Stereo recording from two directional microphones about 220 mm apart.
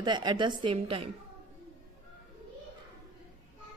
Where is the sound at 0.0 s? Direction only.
20° right (ahead or behind).